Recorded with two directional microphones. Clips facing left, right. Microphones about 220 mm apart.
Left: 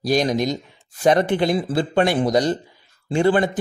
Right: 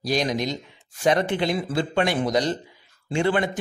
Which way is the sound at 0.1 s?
45° left (ahead or behind).